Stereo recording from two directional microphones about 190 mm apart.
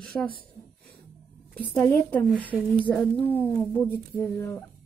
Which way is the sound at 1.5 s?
5° left (ahead or behind).